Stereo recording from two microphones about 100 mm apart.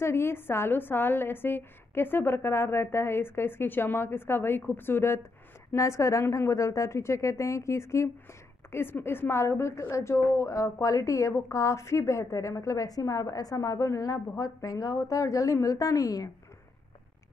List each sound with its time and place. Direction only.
0.0 s a woman's voice: 25° left (ahead or behind)